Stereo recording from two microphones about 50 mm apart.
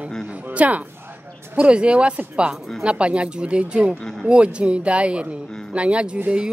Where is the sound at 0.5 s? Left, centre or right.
Right.